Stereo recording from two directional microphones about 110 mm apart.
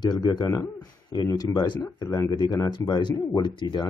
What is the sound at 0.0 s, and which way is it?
Speech, 40° left (ahead or behind).